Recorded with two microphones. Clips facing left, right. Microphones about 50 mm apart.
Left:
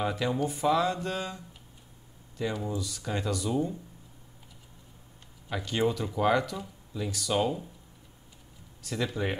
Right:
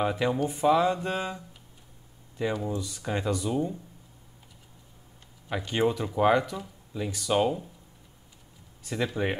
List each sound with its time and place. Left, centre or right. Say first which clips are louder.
0.0 s speech: right 3 dB; centre
5.5 s speech: right 2 dB; centre
8.8 s speech: right 2 dB; centre